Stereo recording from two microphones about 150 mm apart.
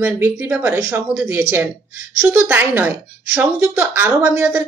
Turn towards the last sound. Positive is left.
turn(degrees=-15)  # may be behind; listen again after turning